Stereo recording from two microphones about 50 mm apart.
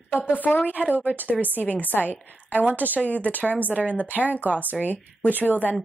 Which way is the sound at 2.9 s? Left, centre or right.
Left.